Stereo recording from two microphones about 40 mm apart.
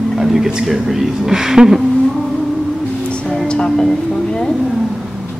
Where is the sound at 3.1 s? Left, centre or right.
Left.